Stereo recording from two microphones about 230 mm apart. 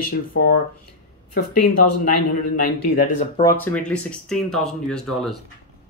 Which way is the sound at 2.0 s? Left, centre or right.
Left.